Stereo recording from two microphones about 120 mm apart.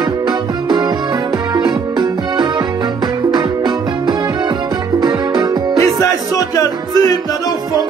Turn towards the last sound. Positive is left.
turn(degrees=30)  # may be behind; listen again after turning